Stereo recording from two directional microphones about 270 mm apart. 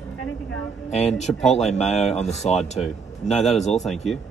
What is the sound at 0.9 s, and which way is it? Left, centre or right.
Speech, centre.